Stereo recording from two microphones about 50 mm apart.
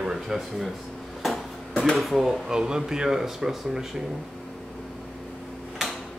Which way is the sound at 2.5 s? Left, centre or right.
Centre.